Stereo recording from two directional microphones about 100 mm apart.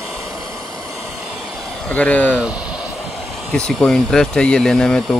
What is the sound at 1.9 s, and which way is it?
Speech, 15° left (ahead or behind).